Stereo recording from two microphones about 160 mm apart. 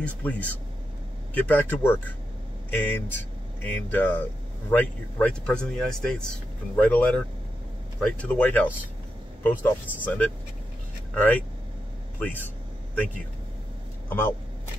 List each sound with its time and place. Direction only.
0.0 s speech: 10° left (ahead or behind)
14.0 s speech: 15° left (ahead or behind)